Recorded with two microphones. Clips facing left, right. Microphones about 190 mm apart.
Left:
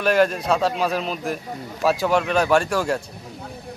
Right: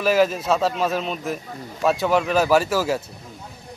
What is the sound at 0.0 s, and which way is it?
A man's voice, 5° right (ahead or behind).